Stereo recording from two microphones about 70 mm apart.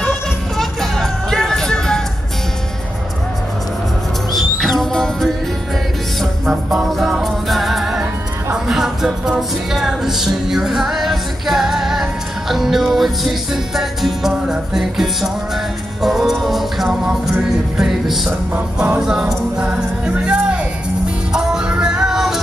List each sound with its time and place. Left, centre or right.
0.6 s music: centre
4.3 s music: centre
6.5 s music: centre
18.5 s music: centre
18.9 s music: centre